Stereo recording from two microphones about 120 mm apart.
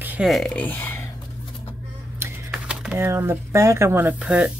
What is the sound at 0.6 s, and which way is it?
Speech, 15° left (ahead or behind).